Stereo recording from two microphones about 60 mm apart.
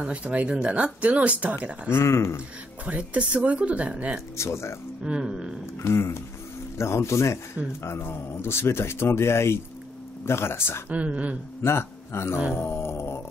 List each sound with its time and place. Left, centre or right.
0.1 s speech: right
1.9 s speech: left
2.8 s speech: right
4.4 s speech: left
5.0 s a sound: centre
5.8 s speech: left
10.9 s speech: right
11.6 s speech: left
12.5 s grunt: left